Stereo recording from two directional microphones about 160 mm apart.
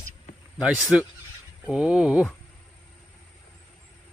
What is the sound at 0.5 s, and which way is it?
Speech, centre (ahead or behind).